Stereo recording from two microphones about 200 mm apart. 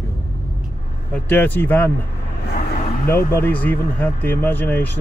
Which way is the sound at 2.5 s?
45° left (ahead or behind).